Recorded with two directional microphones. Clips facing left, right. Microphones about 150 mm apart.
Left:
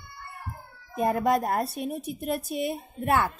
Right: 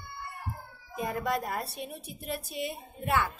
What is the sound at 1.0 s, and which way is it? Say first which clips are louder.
Child singing: left 7 dB; 50° left (ahead or behind).